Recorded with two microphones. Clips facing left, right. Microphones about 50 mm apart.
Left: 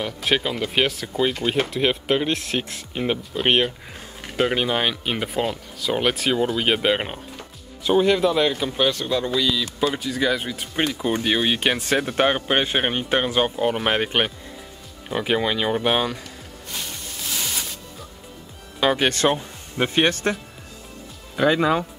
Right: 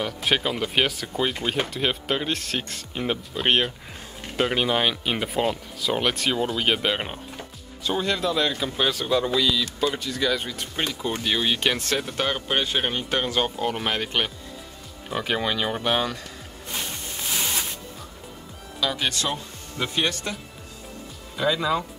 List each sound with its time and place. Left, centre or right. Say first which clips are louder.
0.0 s speech: left 1 dB; centre
8.6 s speech: left 2 dB; centre
12.0 s speech: left 6 dB; left
15.2 s speech: left 4 dB; centre
18.8 s speech: left 7 dB; left
21.4 s speech: left 5 dB; left